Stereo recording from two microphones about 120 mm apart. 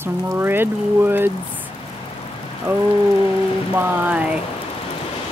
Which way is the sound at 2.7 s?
15° right (ahead or behind).